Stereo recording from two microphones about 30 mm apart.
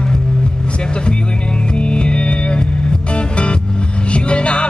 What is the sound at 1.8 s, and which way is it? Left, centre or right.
Music, left.